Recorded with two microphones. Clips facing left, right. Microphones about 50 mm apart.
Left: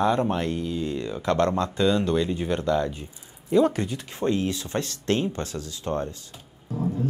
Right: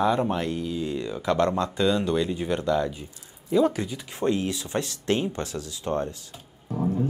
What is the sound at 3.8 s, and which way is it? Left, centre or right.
Speech, left.